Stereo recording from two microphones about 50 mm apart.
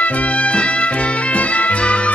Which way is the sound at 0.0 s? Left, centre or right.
Left.